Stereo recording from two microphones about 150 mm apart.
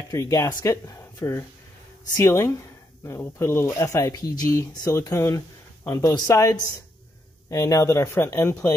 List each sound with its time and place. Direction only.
0.1 s speech: 20° left (ahead or behind)